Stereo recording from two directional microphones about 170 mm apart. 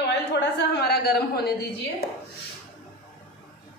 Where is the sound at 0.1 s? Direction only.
90° left; by 1.5 s 70° left (ahead or behind).